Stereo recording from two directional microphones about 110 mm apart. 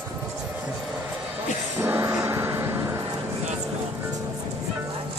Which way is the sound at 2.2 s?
20° right (ahead or behind).